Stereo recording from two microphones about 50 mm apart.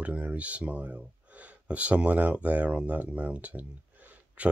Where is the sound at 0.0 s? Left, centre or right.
Right.